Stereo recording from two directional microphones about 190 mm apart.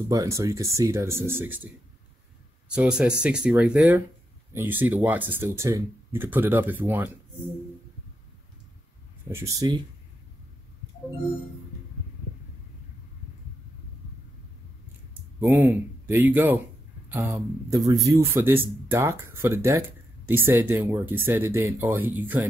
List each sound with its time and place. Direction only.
0.1 s speech: 15° right (ahead or behind)
2.7 s speech: 5° right (ahead or behind)
9.3 s speech: 15° right (ahead or behind)
16.1 s speech: 10° right (ahead or behind)